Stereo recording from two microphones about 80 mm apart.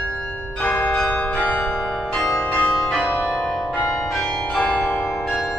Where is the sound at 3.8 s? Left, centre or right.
Left.